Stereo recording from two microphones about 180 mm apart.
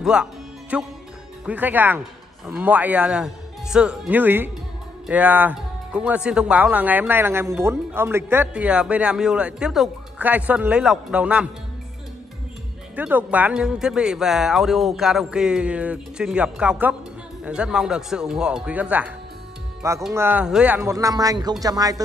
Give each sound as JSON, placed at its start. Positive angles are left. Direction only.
{"t": 0.0, "sound": "music", "side_deg": -5}
{"t": 1.4, "sound": "speech", "side_deg": -10}
{"t": 12.9, "sound": "speech", "side_deg": -10}